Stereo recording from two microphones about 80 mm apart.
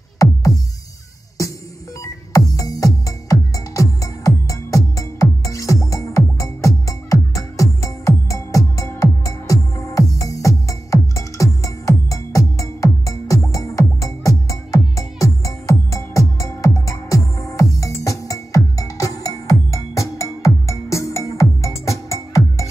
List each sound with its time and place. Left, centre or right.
0.2 s music: left
2.3 s music: left